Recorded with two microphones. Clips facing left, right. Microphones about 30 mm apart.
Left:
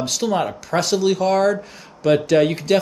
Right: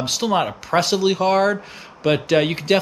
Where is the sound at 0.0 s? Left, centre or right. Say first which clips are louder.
Right 1 dB; centre.